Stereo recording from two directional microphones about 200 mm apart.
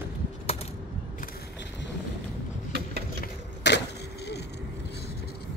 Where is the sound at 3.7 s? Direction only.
60° left (ahead or behind).